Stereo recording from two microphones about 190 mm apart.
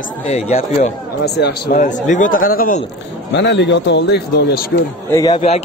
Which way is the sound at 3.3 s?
65° left (ahead or behind).